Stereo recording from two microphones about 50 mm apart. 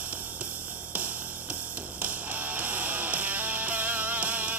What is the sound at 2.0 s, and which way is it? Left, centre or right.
Music, right.